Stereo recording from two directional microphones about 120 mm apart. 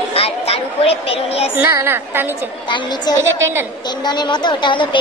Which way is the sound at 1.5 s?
20° right (ahead or behind).